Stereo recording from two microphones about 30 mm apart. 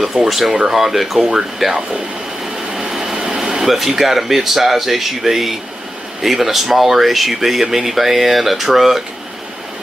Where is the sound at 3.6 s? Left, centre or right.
Centre.